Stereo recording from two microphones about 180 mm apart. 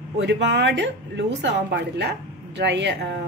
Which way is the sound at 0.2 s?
75° right (ahead or behind).